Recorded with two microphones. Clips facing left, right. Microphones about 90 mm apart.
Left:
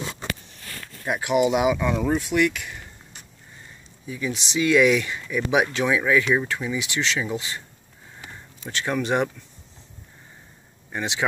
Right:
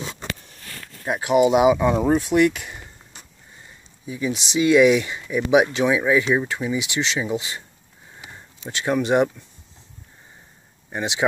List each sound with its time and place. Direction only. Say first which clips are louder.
1.0 s speech: right 3 dB; 25° right (ahead or behind)
4.0 s speech: right 3 dB; 20° right (ahead or behind)
8.2 s a sound: right 1 dB; 15° right (ahead or behind)
10.9 s speech: right 2 dB; 20° right (ahead or behind)